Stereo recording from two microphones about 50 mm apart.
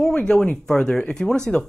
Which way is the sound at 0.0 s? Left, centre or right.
Centre.